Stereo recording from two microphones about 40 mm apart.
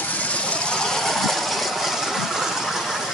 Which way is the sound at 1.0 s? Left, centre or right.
Centre.